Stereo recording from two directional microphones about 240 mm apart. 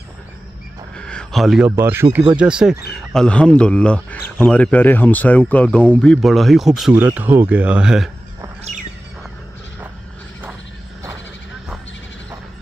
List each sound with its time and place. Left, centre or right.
0.9 s speech: centre